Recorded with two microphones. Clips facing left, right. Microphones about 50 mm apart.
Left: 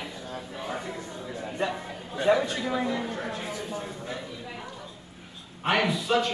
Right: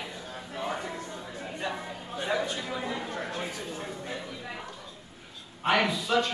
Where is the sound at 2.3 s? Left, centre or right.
Left.